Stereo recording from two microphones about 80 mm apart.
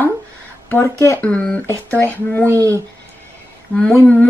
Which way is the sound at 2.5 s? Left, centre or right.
Right.